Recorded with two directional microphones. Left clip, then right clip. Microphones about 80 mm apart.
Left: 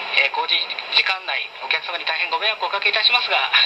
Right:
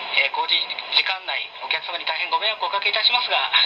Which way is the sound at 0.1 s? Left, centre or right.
Left.